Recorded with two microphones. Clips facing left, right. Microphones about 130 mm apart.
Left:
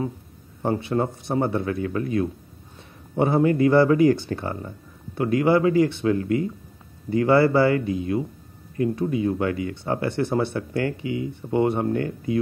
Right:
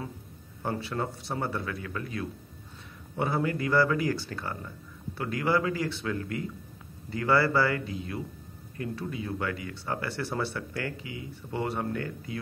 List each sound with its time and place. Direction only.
0.6 s speech: 20° left (ahead or behind)